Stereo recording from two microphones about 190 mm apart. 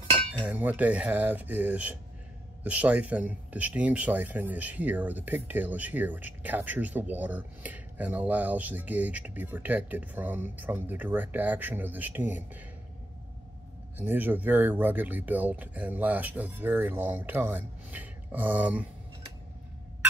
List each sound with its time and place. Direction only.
0.5 s speech: 10° right (ahead or behind)
13.9 s speech: 10° right (ahead or behind)